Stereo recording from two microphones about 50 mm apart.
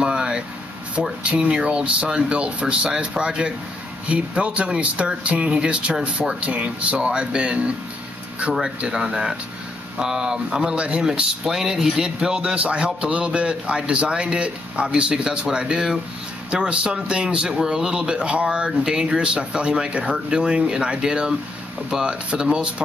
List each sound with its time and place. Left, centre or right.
0.0 s a sound: centre
1.2 s speech: right
11.5 s speech: centre